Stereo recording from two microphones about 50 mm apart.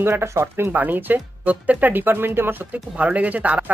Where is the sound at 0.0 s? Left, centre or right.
Right.